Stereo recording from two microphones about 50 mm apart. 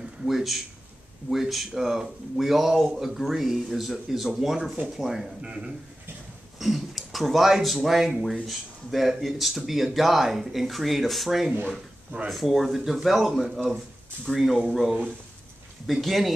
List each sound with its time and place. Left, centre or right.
0.0 s a man's voice: centre
5.4 s a man's voice: right
6.6 s speech: centre